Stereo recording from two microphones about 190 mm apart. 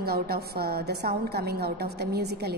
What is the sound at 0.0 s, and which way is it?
A woman's voice, 55° right (ahead or behind).